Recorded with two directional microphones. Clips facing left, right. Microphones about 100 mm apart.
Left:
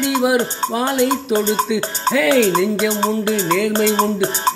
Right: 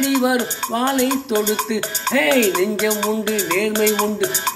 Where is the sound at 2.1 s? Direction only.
5° left (ahead or behind).